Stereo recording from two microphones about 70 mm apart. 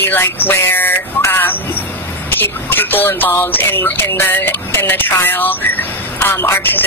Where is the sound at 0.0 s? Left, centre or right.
Left.